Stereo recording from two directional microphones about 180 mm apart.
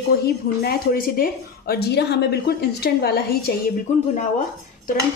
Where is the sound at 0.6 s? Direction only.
55° left (ahead or behind).